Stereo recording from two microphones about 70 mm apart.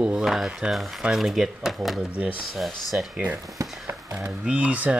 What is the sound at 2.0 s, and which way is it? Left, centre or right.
Speech, centre.